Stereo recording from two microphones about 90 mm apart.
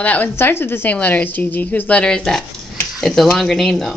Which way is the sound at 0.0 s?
20° left (ahead or behind).